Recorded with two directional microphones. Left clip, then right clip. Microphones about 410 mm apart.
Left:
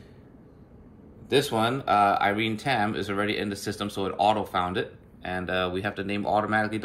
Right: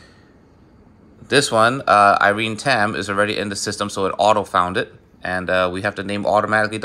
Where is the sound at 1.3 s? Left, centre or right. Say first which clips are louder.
Right 9 dB; centre.